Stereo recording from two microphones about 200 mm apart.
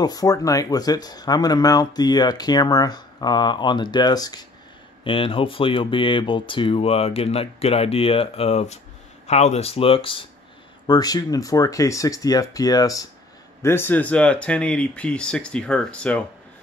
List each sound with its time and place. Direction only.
0.0 s speech: 20° left (ahead or behind)